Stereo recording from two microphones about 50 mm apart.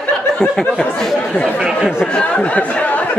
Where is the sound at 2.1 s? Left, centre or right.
Left.